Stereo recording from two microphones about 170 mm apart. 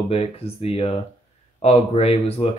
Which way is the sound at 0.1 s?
35° left (ahead or behind).